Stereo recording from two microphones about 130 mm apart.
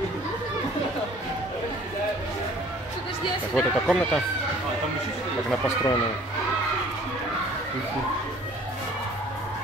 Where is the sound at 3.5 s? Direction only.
5° left (ahead or behind).